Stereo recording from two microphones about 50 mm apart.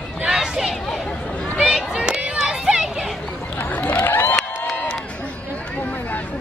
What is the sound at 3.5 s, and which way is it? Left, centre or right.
Chatter, left.